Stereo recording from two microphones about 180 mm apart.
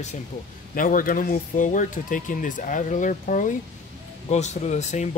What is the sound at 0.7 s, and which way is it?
Speech, 50° left (ahead or behind).